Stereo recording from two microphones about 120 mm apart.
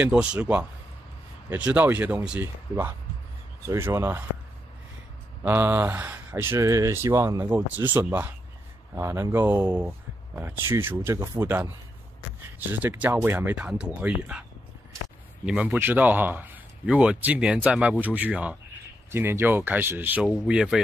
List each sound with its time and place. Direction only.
0.0 s speech: 10° right (ahead or behind)
3.6 s speech: 25° right (ahead or behind)
5.4 s speech: 15° right (ahead or behind)
15.4 s speech: 10° right (ahead or behind)